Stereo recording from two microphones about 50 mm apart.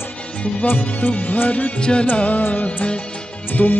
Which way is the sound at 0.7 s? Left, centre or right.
Left.